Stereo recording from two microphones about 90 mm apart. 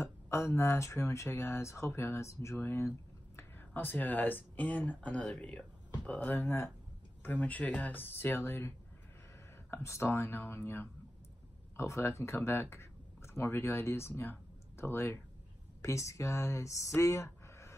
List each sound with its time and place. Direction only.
0.0 s speech: 30° left (ahead or behind)
6.3 s speech: 30° left (ahead or behind)